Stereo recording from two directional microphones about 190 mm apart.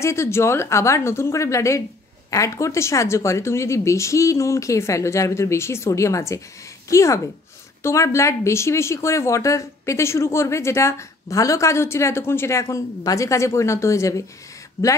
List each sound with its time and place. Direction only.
0.0 s a woman's voice: 15° left (ahead or behind)